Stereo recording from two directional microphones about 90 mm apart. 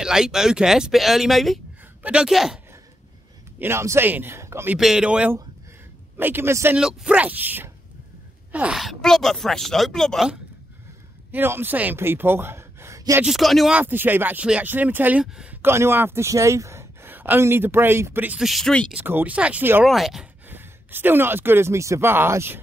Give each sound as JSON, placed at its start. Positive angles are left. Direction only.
{"t": 0.0, "sound": "speech", "side_deg": -5}
{"t": 3.5, "sound": "speech", "side_deg": -25}
{"t": 4.7, "sound": "speech", "side_deg": -5}
{"t": 6.1, "sound": "speech", "side_deg": -25}
{"t": 6.8, "sound": "speech", "side_deg": -10}
{"t": 8.7, "sound": "speech", "side_deg": 0}
{"t": 11.3, "sound": "speech", "side_deg": -25}
{"t": 13.2, "sound": "speech", "side_deg": 0}
{"t": 13.7, "sound": "speech", "side_deg": -20}
{"t": 18.4, "sound": "speech", "side_deg": 0}
{"t": 18.9, "sound": "speech", "side_deg": -20}
{"t": 19.8, "sound": "speech", "side_deg": 0}
{"t": 20.4, "sound": "speech", "side_deg": -25}